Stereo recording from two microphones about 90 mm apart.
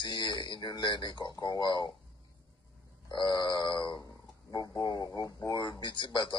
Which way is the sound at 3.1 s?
50° left (ahead or behind).